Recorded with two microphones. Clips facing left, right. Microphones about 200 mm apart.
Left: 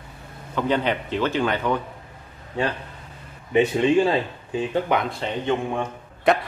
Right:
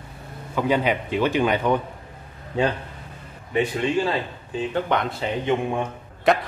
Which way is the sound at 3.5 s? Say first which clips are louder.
Left 4 dB; 25° left (ahead or behind).